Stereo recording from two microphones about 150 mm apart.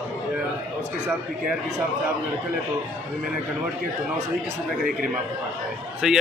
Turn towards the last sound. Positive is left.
turn(degrees=0)  # may be behind; listen again after turning